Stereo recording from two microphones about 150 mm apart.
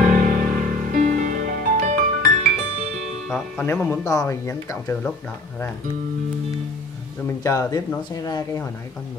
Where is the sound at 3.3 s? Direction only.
10° left (ahead or behind).